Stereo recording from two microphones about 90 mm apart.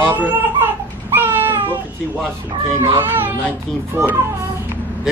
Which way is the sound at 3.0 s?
25° right (ahead or behind).